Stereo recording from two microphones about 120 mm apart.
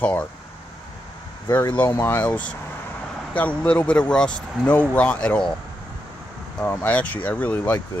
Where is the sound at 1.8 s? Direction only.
20° left (ahead or behind).